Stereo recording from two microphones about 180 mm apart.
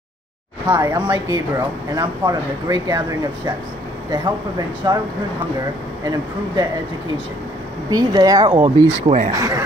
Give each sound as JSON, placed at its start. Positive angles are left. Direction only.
{"t": 0.7, "sound": "speech", "side_deg": -20}
{"t": 4.1, "sound": "speech", "side_deg": -20}
{"t": 6.0, "sound": "speech", "side_deg": -20}
{"t": 7.9, "sound": "speech", "side_deg": -20}
{"t": 8.5, "sound": "speech", "side_deg": -40}
{"t": 9.3, "sound": "speech", "side_deg": -20}